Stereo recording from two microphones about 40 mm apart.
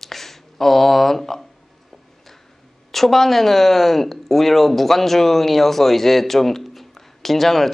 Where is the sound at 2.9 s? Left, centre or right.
Centre.